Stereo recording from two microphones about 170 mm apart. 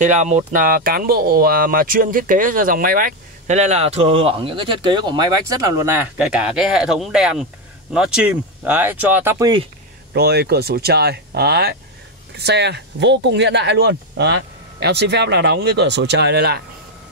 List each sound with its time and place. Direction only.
0.0 s speech: 45° right (ahead or behind); by 5.7 s 25° right (ahead or behind)
5.9 s speech: 5° right (ahead or behind)
10.1 s speech: 70° right (ahead or behind)